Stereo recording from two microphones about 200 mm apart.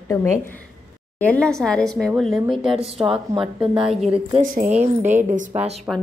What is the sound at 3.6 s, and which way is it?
Speech, 25° right (ahead or behind).